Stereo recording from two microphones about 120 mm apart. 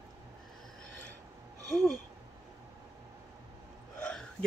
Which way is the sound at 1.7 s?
Centre (ahead or behind).